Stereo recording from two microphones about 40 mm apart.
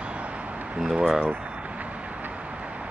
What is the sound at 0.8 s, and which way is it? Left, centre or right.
Speech, centre.